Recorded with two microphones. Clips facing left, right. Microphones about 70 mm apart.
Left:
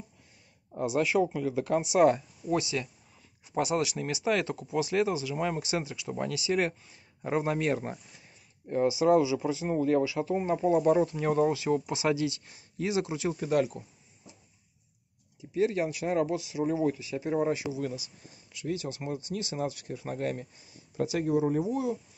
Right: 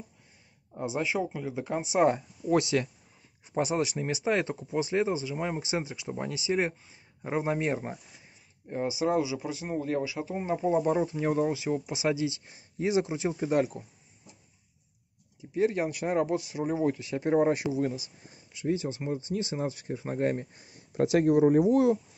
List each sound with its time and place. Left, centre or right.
0.8 s speech: centre
1.8 s speech: right
2.5 s speech: right
3.5 s speech: right
15.5 s speech: right
16.9 s speech: right
17.7 s speech: right